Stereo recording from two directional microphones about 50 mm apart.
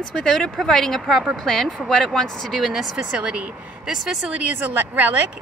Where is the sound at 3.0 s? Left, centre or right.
Centre.